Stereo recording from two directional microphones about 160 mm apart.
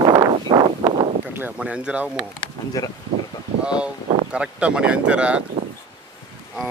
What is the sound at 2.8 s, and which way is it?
Speech, 20° left (ahead or behind).